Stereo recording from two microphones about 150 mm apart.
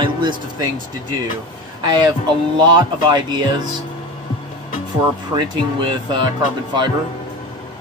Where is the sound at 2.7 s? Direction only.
30° right (ahead or behind).